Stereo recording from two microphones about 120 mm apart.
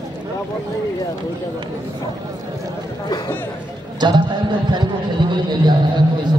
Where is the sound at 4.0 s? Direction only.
40° right (ahead or behind).